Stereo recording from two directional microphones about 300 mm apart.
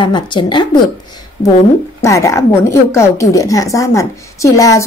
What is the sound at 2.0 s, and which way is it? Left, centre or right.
Speech, centre.